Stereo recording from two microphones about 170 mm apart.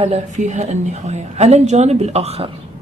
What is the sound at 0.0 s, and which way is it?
Speech, 40° right (ahead or behind).